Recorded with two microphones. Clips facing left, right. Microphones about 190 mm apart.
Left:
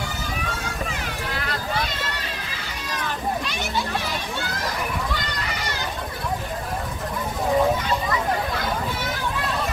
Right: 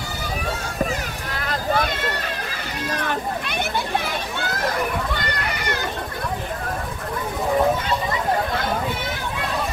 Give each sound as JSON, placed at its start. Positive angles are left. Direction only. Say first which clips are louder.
{"t": 1.3, "sound": "vehicle", "louder": "right 6 dB", "side_deg": -50}
{"t": 2.9, "sound": "children playing", "louder": "right 1 dB", "side_deg": -55}
{"t": 5.4, "sound": "children playing", "louder": "right 3 dB", "side_deg": -60}